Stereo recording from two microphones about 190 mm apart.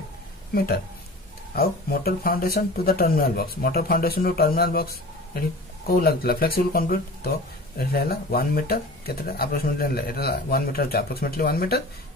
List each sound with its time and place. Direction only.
1.5 s speech: 55° left (ahead or behind)